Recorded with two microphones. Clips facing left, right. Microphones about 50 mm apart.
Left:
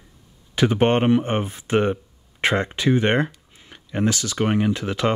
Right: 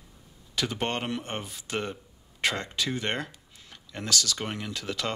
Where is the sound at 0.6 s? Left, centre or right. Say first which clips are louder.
Left 12 dB; left.